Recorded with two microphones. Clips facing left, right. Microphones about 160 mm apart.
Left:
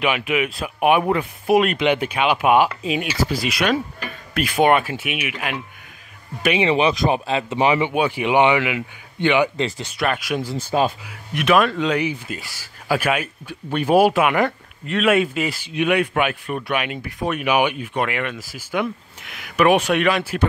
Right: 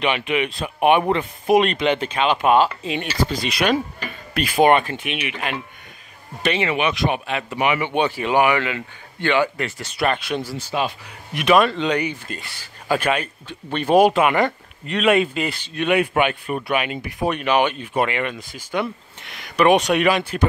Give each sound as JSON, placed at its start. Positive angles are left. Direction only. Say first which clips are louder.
{"t": 0.0, "sound": "speech", "louder": "even", "side_deg": 5}
{"t": 6.7, "sound": "speech", "louder": "left 3 dB", "side_deg": 30}
{"t": 7.9, "sound": "speech", "louder": "left 1 dB", "side_deg": 10}
{"t": 9.9, "sound": "speech", "louder": "right 1 dB", "side_deg": 5}
{"t": 10.7, "sound": "speech", "louder": "left 4 dB", "side_deg": 35}
{"t": 11.3, "sound": "speech", "louder": "right 1 dB", "side_deg": 0}